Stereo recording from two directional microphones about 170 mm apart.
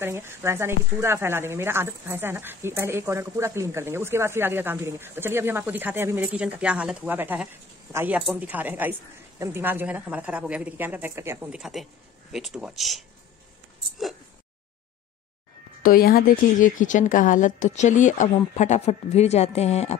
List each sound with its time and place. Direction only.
0.0 s speech: 15° right (ahead or behind)
11.5 s speech: centre (ahead or behind)
15.8 s a woman's voice: 60° left (ahead or behind); by 20.0 s 40° left (ahead or behind)